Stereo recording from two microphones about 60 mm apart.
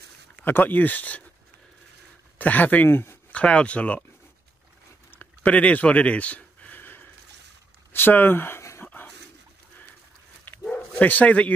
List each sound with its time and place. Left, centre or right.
0.4 s speech: left
2.3 s speech: left
2.9 s speech: left
3.3 s speech: centre
5.2 s a sound: left
7.9 s speech: left
8.8 s dog: left
10.7 s bow-wow: left